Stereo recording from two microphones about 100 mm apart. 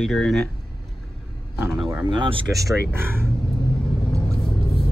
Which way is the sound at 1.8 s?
55° right (ahead or behind).